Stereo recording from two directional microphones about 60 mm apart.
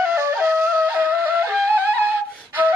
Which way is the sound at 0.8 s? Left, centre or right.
Right.